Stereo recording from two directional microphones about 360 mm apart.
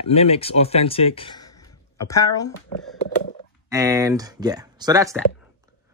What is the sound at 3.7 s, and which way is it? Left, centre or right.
Speech, centre.